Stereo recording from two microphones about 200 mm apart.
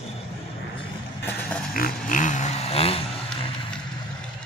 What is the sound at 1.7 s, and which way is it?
Vehicle, 45° left (ahead or behind).